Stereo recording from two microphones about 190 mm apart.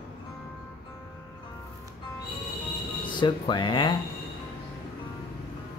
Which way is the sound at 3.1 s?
25° left (ahead or behind).